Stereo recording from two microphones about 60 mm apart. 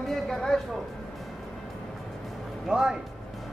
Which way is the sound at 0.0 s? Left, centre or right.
Centre.